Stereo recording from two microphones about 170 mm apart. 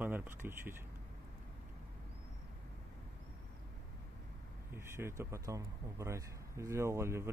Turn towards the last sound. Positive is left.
turn(degrees=-15)  # may be behind; listen again after turning